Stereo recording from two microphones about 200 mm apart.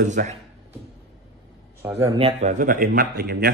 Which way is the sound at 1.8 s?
10° right (ahead or behind).